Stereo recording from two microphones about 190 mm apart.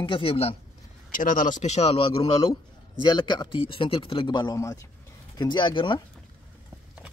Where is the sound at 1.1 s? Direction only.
45° left (ahead or behind); by 6.0 s 25° left (ahead or behind).